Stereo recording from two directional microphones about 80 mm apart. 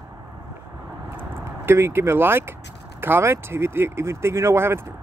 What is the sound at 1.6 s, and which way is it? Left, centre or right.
Speech, right.